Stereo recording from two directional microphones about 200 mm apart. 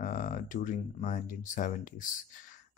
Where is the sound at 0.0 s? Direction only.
40° left (ahead or behind).